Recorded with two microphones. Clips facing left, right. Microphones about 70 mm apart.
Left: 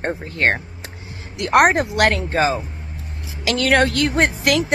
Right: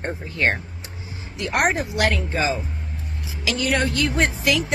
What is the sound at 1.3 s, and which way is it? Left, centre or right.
Speech, left.